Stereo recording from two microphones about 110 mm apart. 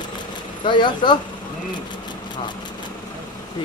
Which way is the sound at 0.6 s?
45° left (ahead or behind).